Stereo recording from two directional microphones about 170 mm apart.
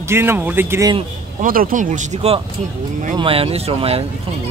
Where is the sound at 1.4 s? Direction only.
55° right (ahead or behind); by 4.0 s 35° right (ahead or behind).